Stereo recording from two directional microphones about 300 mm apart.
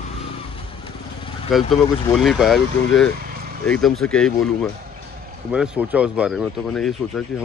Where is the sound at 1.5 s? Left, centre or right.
Centre.